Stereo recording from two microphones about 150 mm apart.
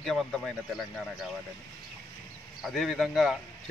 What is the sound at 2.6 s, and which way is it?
Speech, centre (ahead or behind).